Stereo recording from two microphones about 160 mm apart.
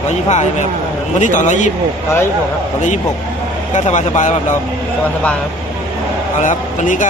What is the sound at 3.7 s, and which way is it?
Speech, 50° left (ahead or behind).